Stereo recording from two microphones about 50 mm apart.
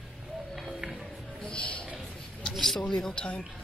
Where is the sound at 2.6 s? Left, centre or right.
Centre.